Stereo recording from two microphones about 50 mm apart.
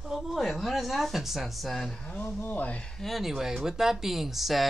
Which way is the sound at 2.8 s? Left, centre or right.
Centre.